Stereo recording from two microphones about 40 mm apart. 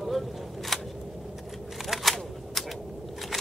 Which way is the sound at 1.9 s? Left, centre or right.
Centre.